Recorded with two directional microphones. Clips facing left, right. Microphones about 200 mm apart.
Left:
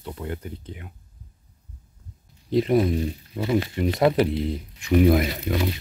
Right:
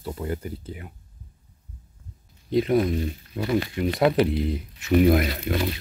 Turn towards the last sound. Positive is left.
turn(degrees=5)  # may be behind; listen again after turning